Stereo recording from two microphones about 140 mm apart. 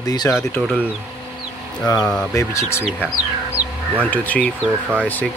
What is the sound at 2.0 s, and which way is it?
Speech, centre (ahead or behind).